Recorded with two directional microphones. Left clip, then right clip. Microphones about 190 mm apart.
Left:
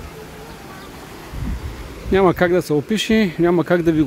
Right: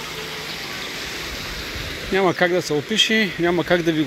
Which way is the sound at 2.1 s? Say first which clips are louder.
Left 3 dB; 35° left (ahead or behind).